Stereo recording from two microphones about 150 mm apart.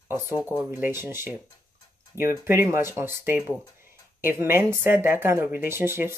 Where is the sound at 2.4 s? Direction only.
15° right (ahead or behind).